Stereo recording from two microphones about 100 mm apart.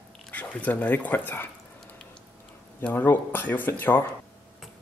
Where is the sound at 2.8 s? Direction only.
15° left (ahead or behind).